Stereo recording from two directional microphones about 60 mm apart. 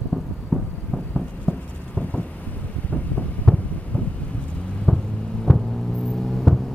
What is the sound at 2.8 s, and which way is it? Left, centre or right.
Vehicle, left.